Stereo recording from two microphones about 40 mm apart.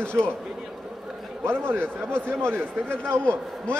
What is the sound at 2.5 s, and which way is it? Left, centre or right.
Speech, right.